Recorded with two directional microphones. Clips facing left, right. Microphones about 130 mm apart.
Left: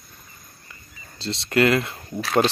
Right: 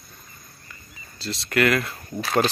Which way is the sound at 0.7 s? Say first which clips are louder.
Even; 25° left (ahead or behind).